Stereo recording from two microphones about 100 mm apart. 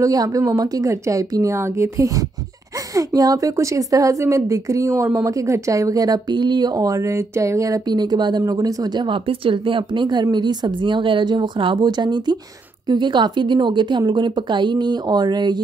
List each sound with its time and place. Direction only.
0.0 s speech: 40° right (ahead or behind)